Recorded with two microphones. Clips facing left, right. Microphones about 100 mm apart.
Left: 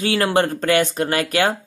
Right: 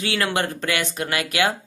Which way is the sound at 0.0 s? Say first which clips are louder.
Left 5 dB; 35° left (ahead or behind).